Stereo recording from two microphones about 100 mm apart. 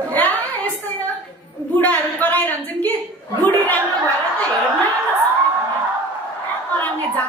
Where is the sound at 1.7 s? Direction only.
15° left (ahead or behind).